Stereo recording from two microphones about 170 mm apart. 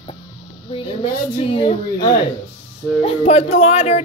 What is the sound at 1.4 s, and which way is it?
Speech, 35° left (ahead or behind).